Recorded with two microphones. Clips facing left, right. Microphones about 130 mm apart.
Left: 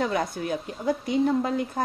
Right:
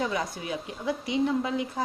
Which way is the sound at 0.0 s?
55° left (ahead or behind).